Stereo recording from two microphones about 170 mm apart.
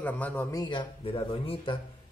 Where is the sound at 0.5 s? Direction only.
30° left (ahead or behind).